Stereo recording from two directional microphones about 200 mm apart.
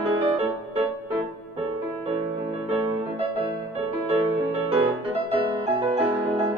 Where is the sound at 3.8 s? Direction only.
30° right (ahead or behind).